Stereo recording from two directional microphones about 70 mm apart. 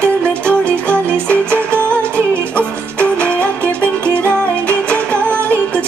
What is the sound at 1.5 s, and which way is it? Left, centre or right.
Music, right.